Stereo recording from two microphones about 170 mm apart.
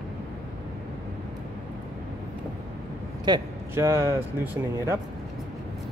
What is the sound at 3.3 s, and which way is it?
Speech, 25° right (ahead or behind).